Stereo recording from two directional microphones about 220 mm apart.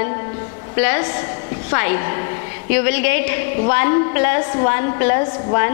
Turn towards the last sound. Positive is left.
turn(degrees=15)  # may be behind; listen again after turning